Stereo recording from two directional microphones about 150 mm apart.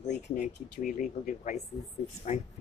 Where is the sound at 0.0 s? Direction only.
55° left (ahead or behind).